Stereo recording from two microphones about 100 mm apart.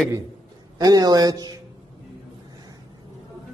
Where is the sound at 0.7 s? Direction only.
40° right (ahead or behind).